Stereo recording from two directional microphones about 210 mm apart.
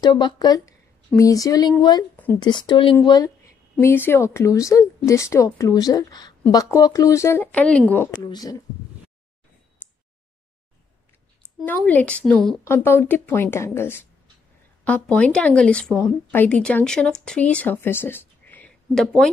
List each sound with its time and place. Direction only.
0.0 s a woman's voice: 20° left (ahead or behind)
11.6 s a woman's voice: 10° left (ahead or behind)